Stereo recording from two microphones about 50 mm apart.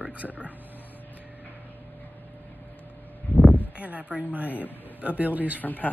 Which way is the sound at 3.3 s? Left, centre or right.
Left.